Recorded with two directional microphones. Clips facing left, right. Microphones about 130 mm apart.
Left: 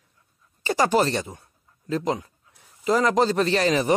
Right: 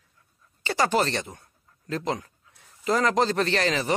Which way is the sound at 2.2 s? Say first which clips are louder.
Left 2 dB; 10° left (ahead or behind).